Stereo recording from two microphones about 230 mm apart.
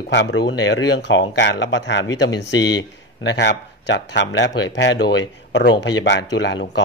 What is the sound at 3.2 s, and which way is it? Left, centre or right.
Speech, left.